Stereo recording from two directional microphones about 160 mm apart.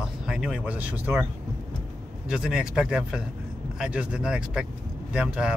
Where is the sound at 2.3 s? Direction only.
5° right (ahead or behind).